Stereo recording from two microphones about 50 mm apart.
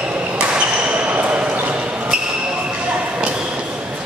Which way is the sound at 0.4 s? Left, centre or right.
Right.